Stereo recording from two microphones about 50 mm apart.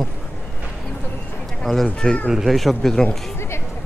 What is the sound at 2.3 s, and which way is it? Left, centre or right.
Speech, centre.